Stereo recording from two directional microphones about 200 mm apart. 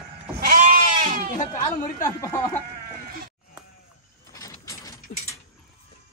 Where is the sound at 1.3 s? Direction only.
45° left (ahead or behind).